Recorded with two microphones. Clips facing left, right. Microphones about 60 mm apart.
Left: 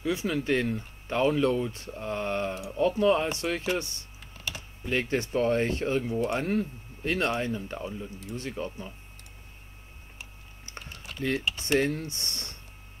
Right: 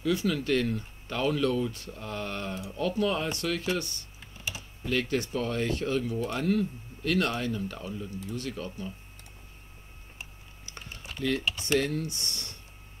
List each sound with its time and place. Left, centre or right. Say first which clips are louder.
0.0 s speech: right 1 dB; left
10.6 s speech: left 1 dB; left